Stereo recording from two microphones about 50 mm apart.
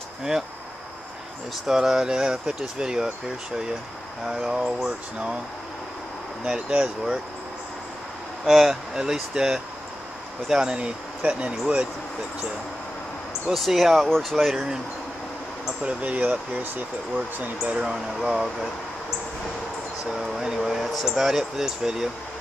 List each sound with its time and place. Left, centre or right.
1.7 s speech: centre
4.5 s speech: centre
6.4 s speech: centre
8.5 s speech: centre
13.5 s speech: centre
15.8 s speech: right
17.9 s speech: centre
20.2 s speech: centre